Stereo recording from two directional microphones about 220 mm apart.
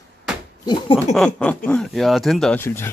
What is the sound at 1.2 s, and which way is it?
Speech, 5° left (ahead or behind).